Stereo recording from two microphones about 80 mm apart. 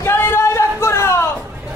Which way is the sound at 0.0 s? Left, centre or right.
Left.